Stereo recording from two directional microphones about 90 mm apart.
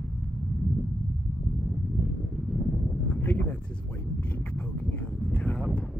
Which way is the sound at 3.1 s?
20° left (ahead or behind).